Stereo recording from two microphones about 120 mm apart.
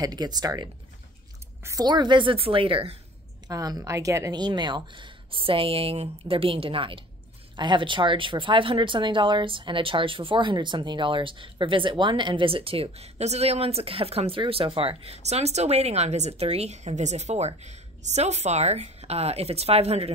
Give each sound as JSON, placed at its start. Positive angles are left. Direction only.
{"t": 0.0, "sound": "a woman's voice", "side_deg": -35}
{"t": 1.9, "sound": "speech", "side_deg": -40}
{"t": 3.4, "sound": "speech", "side_deg": -30}